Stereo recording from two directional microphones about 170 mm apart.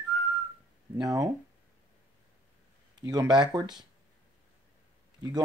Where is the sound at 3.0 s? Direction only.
25° right (ahead or behind).